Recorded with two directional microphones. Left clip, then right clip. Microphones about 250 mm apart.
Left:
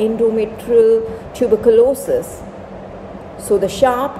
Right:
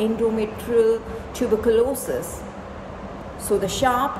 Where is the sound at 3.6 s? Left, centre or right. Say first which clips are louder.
Left 6 dB; centre.